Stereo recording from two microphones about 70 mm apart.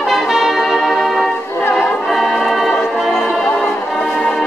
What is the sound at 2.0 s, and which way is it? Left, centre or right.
Music, centre.